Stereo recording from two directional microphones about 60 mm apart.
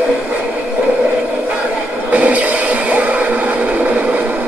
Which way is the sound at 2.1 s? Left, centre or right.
Right.